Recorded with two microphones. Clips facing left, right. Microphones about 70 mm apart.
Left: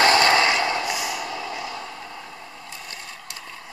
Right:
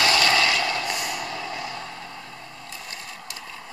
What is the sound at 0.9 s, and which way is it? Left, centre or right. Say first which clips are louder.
Vehicle: left 2 dB; centre.